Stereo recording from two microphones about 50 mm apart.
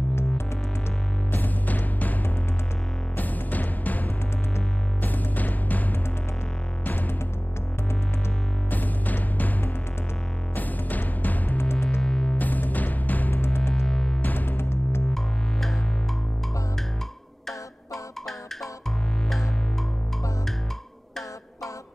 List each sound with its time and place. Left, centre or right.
1.3 s music: left
3.2 s music: left
8.6 s music: left
11.5 s music: left
12.0 s music: centre
12.4 s music: left
13.8 s music: centre
14.2 s music: left
14.6 s music: left